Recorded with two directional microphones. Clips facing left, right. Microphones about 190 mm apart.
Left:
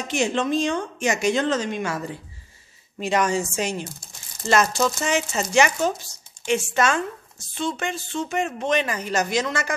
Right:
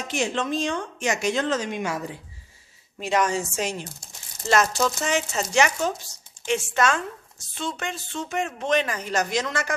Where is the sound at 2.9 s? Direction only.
Centre (ahead or behind).